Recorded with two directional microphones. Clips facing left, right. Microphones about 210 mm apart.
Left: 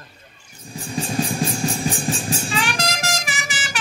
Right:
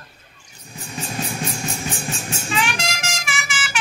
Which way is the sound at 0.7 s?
30° left (ahead or behind).